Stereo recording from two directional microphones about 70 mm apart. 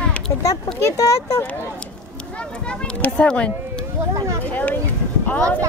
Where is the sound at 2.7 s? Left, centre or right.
Centre.